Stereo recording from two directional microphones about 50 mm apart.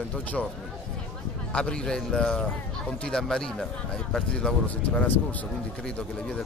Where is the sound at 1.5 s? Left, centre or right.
Centre.